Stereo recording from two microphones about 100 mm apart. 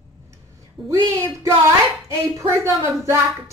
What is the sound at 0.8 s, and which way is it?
Speech, centre (ahead or behind).